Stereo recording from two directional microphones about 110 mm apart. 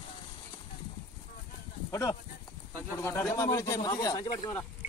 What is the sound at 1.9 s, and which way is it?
Speech, 30° left (ahead or behind).